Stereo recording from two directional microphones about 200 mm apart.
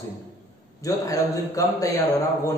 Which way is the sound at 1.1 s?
15° left (ahead or behind).